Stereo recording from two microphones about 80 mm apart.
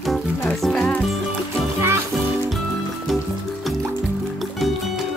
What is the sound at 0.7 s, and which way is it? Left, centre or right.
Music, left.